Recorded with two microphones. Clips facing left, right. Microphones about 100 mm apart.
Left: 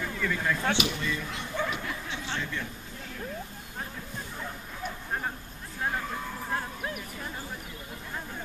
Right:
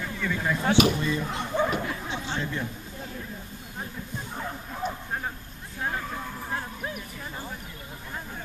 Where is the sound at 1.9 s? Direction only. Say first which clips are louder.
Right 3 dB; 20° right (ahead or behind).